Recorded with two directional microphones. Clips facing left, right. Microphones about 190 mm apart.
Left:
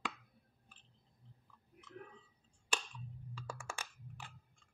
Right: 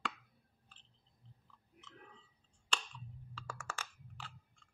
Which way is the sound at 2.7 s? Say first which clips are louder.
Left 1 dB; 15° left (ahead or behind).